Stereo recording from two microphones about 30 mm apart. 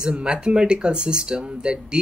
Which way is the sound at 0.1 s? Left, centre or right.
Right.